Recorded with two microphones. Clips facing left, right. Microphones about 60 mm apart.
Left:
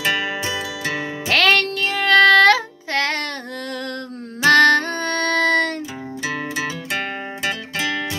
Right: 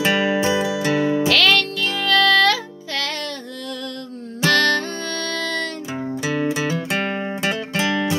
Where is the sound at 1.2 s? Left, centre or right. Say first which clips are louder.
Even; left.